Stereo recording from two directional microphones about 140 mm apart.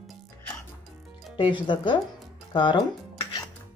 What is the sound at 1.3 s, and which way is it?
Speech, 35° left (ahead or behind).